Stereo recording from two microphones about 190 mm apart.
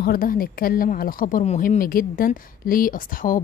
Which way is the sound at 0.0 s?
50° left (ahead or behind).